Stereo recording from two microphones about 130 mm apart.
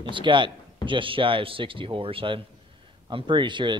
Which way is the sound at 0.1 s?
40° right (ahead or behind).